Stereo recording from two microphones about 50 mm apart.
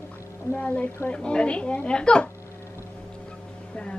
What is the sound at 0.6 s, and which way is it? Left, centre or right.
A woman's voice, left.